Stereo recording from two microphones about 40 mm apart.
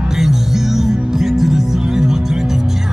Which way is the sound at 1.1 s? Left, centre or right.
Centre.